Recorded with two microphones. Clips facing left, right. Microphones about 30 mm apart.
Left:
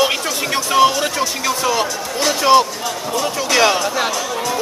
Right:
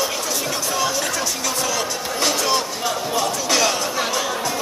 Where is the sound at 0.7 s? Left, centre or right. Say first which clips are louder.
Left 10 dB; left.